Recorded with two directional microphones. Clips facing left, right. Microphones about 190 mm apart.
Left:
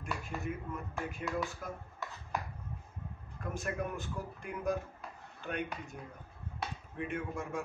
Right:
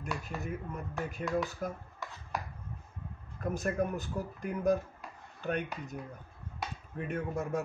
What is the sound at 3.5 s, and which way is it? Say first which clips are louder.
Speech: right 5 dB; 40° right (ahead or behind).